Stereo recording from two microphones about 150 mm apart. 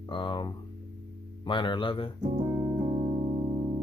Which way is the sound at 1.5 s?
35° left (ahead or behind).